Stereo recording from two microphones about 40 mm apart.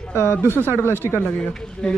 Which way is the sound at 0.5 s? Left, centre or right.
Left.